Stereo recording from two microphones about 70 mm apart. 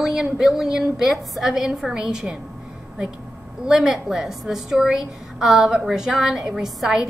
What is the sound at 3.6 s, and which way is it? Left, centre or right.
A woman's voice, centre.